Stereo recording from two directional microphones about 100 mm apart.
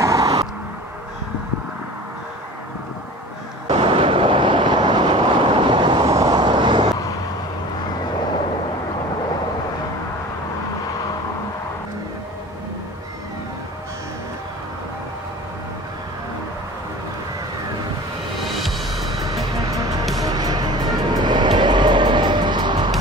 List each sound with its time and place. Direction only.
0.0 s vehicle: 35° right (ahead or behind)
3.6 s vehicle: 70° right (ahead or behind); by 6.0 s 50° right (ahead or behind)
6.1 s vehicle: 40° right (ahead or behind)
18.5 s music: centre (ahead or behind)
19.0 s music: 35° right (ahead or behind)